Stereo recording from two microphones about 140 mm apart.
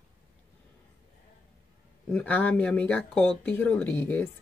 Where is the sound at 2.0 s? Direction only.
10° left (ahead or behind).